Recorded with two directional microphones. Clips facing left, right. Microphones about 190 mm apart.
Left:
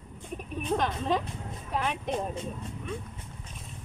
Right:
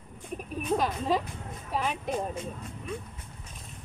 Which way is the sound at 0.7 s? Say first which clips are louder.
Right 1 dB; 5° right (ahead or behind).